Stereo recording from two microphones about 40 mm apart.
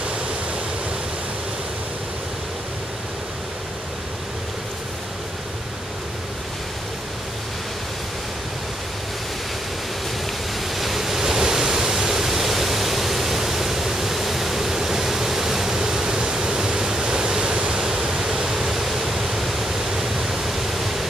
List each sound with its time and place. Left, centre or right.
10.7 s pink noise: centre